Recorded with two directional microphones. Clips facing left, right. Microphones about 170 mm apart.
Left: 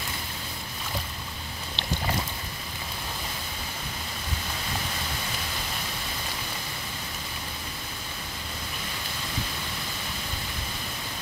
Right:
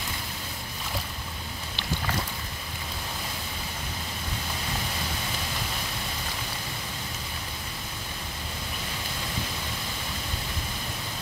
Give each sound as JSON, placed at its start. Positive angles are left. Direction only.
{"t": 1.8, "sound": "boat", "side_deg": 25}